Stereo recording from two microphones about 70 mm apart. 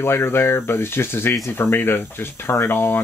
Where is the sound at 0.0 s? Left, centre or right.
Left.